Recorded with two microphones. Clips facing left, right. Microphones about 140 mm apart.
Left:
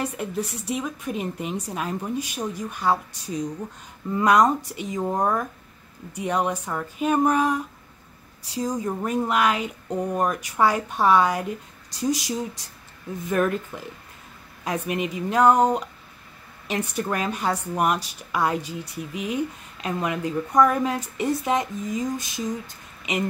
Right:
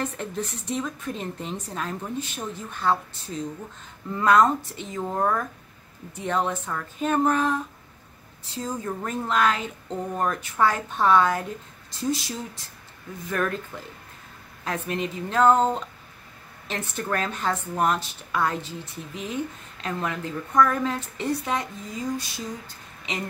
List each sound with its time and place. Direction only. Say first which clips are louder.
0.0 s a woman's voice: left 2 dB; 10° left (ahead or behind)
14.6 s a woman's voice: left 2 dB; 15° left (ahead or behind)